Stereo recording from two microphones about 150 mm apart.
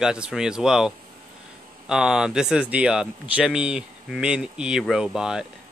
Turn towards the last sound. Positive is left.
turn(degrees=-5)  # may be behind; listen again after turning